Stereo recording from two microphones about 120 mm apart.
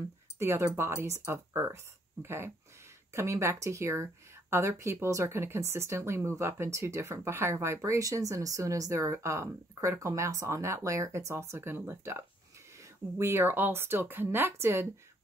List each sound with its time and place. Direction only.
0.4 s speech: 20° right (ahead or behind)
13.2 s speech: 20° right (ahead or behind)